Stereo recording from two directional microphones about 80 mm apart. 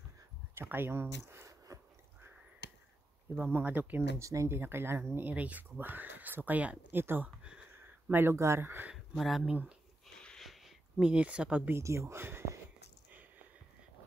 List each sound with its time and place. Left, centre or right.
0.6 s speech: right
3.3 s speech: right
4.2 s speech: right
4.6 s speech: right
7.0 s speech: right
7.7 s a sound: right
8.4 s speech: right
8.9 s speech: centre
9.4 s speech: centre
10.1 s a sound: centre
11.1 s speech: centre
11.7 s speech: right